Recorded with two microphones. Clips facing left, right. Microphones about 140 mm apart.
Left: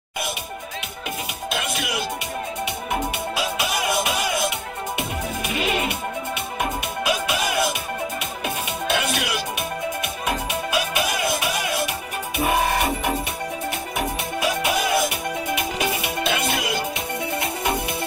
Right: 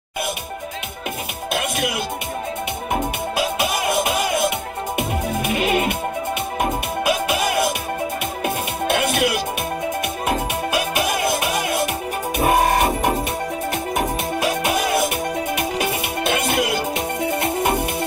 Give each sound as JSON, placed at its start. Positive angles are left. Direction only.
{"t": 1.5, "sound": "music", "side_deg": -55}
{"t": 3.3, "sound": "music", "side_deg": -50}
{"t": 8.8, "sound": "music", "side_deg": -50}
{"t": 10.7, "sound": "music", "side_deg": -50}